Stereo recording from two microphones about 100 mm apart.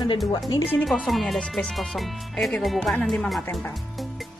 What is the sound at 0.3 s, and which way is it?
Speech, 40° left (ahead or behind).